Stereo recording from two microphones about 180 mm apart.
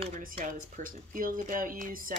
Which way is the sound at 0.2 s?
50° right (ahead or behind).